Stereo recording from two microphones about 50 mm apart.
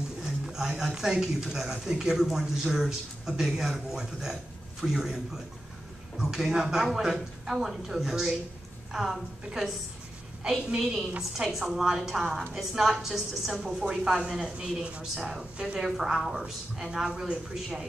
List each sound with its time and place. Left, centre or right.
0.2 s speech: centre
10.8 s a woman's voice: centre; by 15.8 s right
15.8 s speech: centre